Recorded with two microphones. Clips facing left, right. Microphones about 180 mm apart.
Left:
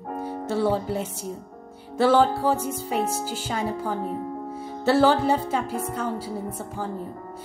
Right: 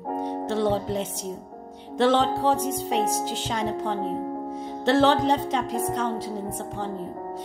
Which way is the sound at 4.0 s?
25° right (ahead or behind).